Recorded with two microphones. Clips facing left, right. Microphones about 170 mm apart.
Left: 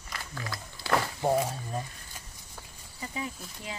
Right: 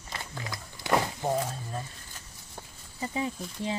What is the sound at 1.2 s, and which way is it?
Speech, 15° left (ahead or behind).